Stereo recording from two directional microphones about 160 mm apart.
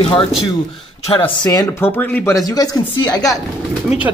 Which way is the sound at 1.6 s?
10° left (ahead or behind).